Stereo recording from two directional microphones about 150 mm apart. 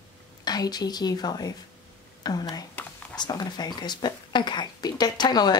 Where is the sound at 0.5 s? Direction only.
25° left (ahead or behind).